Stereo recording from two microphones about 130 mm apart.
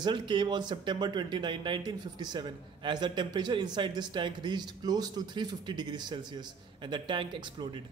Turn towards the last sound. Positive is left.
turn(degrees=-40)  # may be behind; listen again after turning